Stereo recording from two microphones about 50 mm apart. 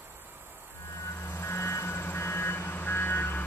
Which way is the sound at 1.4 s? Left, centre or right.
Left.